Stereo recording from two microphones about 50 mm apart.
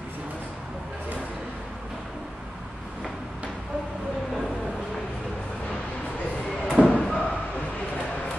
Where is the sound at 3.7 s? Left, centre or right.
Right.